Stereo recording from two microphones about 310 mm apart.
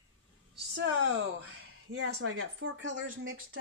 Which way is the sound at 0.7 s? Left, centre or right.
Right.